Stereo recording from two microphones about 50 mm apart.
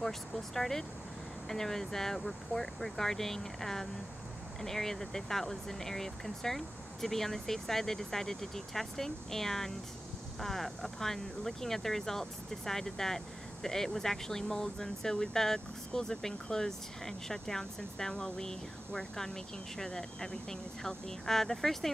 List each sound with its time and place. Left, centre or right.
0.0 s speech: centre